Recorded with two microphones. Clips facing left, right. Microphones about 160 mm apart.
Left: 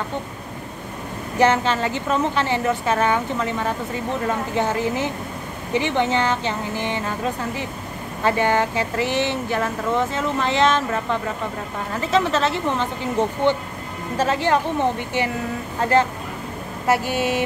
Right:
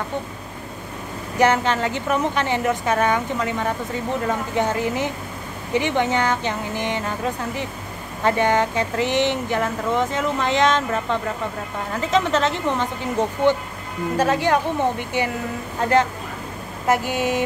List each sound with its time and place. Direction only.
1.4 s speech: 15° right (ahead or behind)
4.6 s speech: 15° right (ahead or behind)
8.4 s speech: 15° right (ahead or behind)
16.8 s speech: 15° right (ahead or behind)